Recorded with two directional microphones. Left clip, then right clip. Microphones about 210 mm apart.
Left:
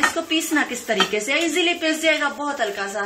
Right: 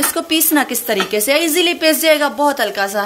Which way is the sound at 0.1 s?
50° right (ahead or behind).